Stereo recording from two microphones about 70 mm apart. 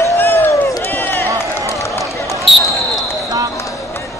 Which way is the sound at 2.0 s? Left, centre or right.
Left.